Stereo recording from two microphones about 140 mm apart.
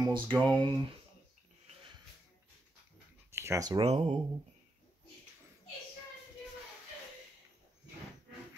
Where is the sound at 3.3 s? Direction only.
20° right (ahead or behind).